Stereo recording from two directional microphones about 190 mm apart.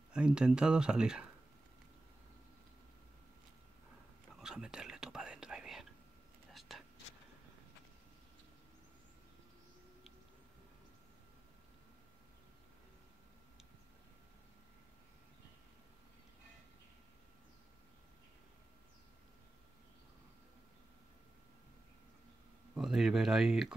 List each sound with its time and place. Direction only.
0.1 s speech: 5° right (ahead or behind)
4.4 s whispering: 5° right (ahead or behind)
22.8 s a sound: centre (ahead or behind)